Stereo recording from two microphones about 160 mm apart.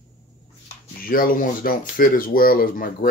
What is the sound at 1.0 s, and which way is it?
Speech, 65° left (ahead or behind).